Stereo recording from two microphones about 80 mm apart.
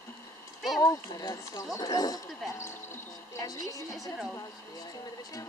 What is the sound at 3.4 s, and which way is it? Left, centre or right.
Speech, left.